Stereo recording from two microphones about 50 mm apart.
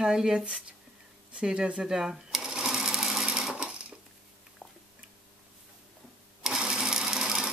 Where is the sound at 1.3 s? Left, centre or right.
Centre.